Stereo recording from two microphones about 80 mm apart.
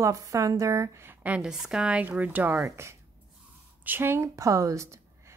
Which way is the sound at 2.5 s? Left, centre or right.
Right.